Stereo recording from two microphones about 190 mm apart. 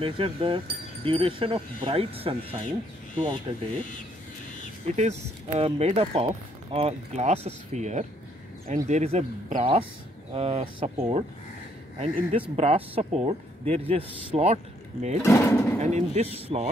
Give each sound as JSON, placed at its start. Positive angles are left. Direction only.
{"t": 0.0, "sound": "speech", "side_deg": -30}
{"t": 3.5, "sound": "speech", "side_deg": -25}
{"t": 4.8, "sound": "speech", "side_deg": -35}
{"t": 15.2, "sound": "speech", "side_deg": 10}
{"t": 15.8, "sound": "speech", "side_deg": -35}